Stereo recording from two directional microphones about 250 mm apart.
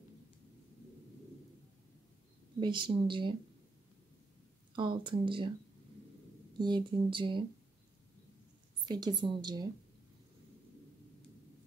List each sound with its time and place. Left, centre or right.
2.6 s speech: centre
4.7 s speech: centre
6.6 s speech: centre
8.8 s a woman's voice: centre